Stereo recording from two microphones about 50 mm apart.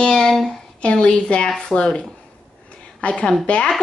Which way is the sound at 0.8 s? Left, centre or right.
Centre.